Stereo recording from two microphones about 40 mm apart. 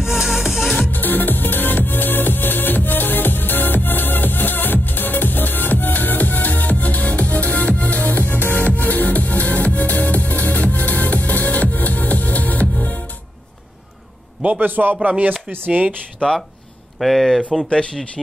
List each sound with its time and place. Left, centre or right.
0.0 s music: centre
0.7 s music: left
14.4 s a man's voice: right
15.0 s speech: right
16.2 s speech: left
17.0 s speech: centre